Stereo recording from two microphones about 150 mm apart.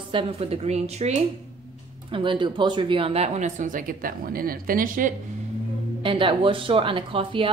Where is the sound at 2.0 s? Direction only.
35° right (ahead or behind); by 5.1 s 65° right (ahead or behind).